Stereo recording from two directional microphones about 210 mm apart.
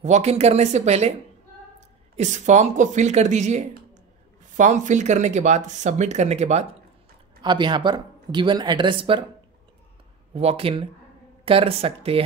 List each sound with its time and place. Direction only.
0.0 s speech: 30° right (ahead or behind)
2.1 s speech: 35° right (ahead or behind)
10.3 s speech: 30° right (ahead or behind)